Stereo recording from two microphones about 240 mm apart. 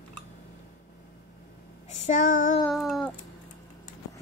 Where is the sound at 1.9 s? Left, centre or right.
Left.